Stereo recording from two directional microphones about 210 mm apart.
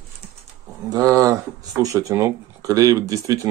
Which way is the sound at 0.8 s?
15° right (ahead or behind).